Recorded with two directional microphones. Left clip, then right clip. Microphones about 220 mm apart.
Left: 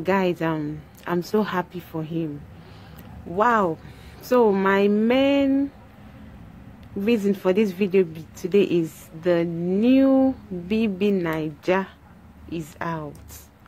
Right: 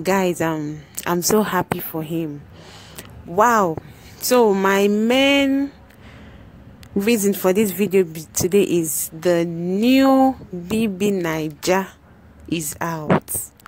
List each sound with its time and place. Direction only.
0.0 s speech: 40° right (ahead or behind)
3.3 s speech: 40° right (ahead or behind)
7.0 s a woman's voice: 45° right (ahead or behind)